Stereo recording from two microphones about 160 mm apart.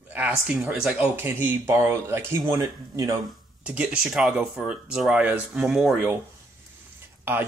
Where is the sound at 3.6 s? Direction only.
5° right (ahead or behind).